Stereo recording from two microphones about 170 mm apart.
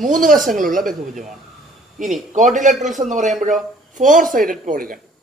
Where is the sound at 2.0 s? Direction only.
50° right (ahead or behind).